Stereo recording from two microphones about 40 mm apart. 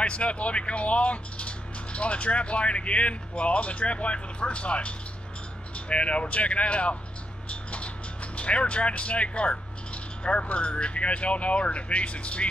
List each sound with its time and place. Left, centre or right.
0.0 s speech: left
7.4 s a sound: left
8.4 s speech: left